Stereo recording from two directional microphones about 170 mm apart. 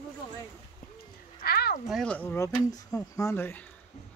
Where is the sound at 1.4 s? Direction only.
65° left (ahead or behind).